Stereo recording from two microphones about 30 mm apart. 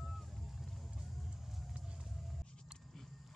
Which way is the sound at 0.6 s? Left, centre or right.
Centre.